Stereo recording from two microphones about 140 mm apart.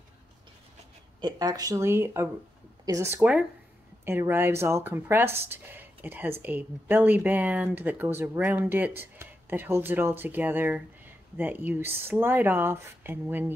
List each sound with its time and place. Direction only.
1.2 s speech: 25° right (ahead or behind)
3.2 s speech: 10° right (ahead or behind)